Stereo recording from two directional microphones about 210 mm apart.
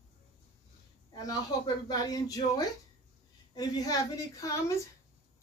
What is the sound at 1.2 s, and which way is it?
Speech, 20° left (ahead or behind).